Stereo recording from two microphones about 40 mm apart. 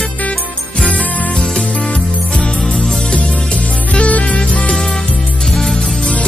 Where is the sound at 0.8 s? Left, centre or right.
Left.